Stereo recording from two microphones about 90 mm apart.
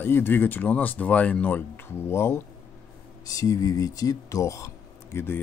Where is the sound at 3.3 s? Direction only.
40° left (ahead or behind).